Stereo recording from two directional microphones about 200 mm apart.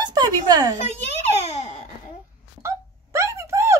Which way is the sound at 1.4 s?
35° left (ahead or behind).